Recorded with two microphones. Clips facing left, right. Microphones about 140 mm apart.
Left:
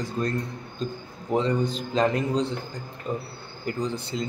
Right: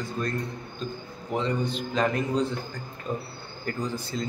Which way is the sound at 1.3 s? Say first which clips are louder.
Left 4 dB; 35° left (ahead or behind).